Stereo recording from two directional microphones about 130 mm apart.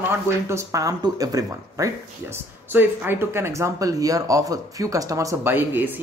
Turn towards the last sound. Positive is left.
turn(degrees=-15)  # may be behind; listen again after turning